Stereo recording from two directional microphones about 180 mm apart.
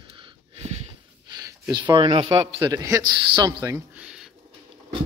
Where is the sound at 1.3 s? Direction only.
20° right (ahead or behind).